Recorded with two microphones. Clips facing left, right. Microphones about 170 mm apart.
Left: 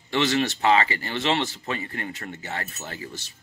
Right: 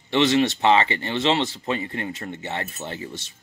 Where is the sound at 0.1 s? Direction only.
20° right (ahead or behind).